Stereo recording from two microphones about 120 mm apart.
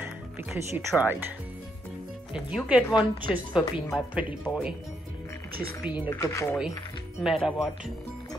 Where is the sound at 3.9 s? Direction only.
5° right (ahead or behind).